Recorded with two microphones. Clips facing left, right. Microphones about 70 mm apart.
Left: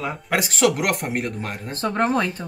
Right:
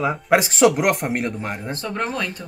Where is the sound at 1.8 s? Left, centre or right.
Left.